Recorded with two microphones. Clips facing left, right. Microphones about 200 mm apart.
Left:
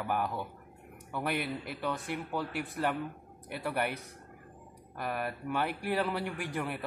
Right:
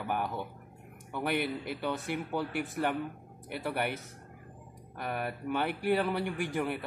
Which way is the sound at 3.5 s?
Centre (ahead or behind).